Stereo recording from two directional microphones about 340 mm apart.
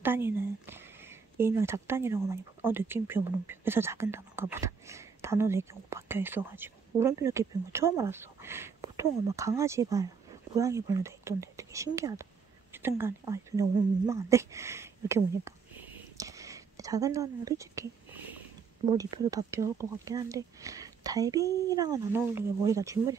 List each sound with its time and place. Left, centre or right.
0.0 s speech: centre
16.2 s a sound: centre
18.9 s speech: centre
21.5 s speech: centre
21.7 s speech: centre